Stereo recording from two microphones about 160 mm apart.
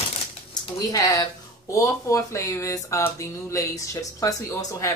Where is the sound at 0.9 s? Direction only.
20° left (ahead or behind).